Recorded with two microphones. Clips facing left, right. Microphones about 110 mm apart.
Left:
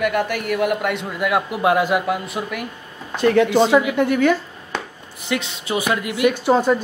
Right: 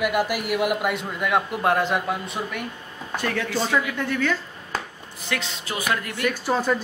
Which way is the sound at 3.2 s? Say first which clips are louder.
Left 11 dB; 20° left (ahead or behind).